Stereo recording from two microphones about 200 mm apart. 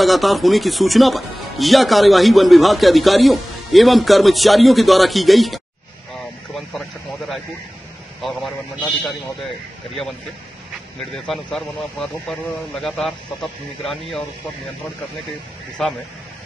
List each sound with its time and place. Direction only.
0.0 s speech: centre (ahead or behind)
11.2 s speech: centre (ahead or behind)
15.8 s speech: centre (ahead or behind)